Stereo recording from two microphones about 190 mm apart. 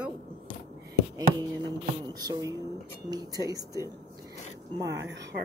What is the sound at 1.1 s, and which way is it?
Speech, 20° right (ahead or behind).